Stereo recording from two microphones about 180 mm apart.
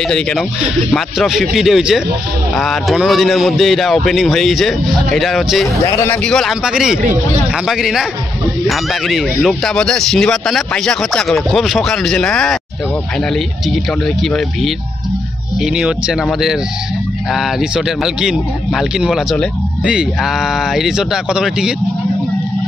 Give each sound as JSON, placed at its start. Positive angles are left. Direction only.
{"t": 0.1, "sound": "speech", "side_deg": 5}
{"t": 5.8, "sound": "speech", "side_deg": 15}
{"t": 7.0, "sound": "speech", "side_deg": -45}
{"t": 7.6, "sound": "speech", "side_deg": 0}